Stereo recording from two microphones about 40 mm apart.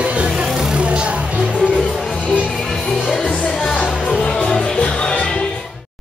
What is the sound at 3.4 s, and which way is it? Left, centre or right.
Music, centre.